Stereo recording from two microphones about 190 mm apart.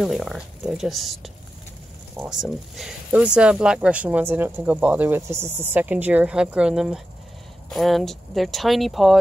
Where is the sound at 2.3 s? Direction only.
5° right (ahead or behind).